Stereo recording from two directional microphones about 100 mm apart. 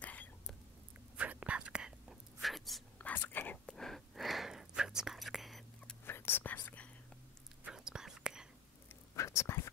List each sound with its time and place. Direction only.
0.0 s whispering: 15° left (ahead or behind)
1.1 s whispering: 15° right (ahead or behind)
3.0 s whispering: 15° left (ahead or behind)
3.6 s whispering: 5° left (ahead or behind)
6.0 s whispering: 25° left (ahead or behind)
7.6 s whispering: 5° right (ahead or behind)
9.1 s whispering: 30° left (ahead or behind)